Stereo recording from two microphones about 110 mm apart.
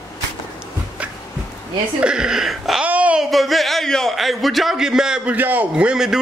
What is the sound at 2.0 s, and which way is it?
Speech, 5° right (ahead or behind).